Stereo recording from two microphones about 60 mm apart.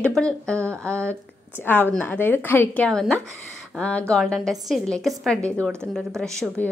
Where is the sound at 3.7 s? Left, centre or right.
Left.